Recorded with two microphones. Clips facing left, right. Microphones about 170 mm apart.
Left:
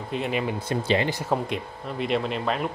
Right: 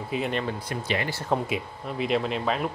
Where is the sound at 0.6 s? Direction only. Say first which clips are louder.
Left 5 dB; 25° left (ahead or behind).